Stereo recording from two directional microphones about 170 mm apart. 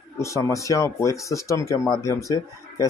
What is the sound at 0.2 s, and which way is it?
Speech, 20° left (ahead or behind).